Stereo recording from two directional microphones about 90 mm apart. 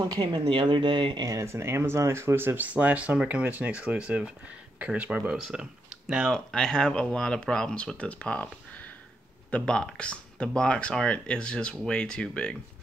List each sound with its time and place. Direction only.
0.2 s speech: 70° right (ahead or behind)
1.2 s speech: 35° right (ahead or behind); by 6.3 s 10° right (ahead or behind)
6.3 s speech: 10° left (ahead or behind)
9.5 s speech: 10° left (ahead or behind)